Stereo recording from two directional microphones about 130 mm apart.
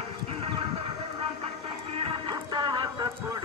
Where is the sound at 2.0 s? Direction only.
40° right (ahead or behind).